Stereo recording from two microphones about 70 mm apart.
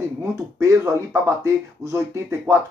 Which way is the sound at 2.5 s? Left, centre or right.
Right.